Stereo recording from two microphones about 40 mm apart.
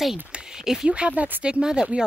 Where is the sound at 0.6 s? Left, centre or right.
Centre.